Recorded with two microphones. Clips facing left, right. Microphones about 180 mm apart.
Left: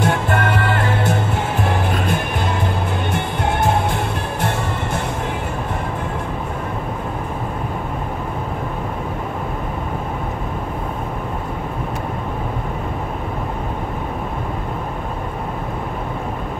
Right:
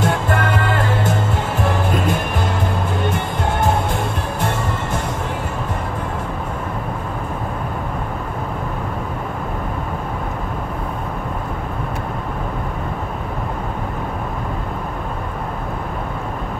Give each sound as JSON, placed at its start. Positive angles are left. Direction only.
{"t": 0.0, "sound": "music", "side_deg": 50}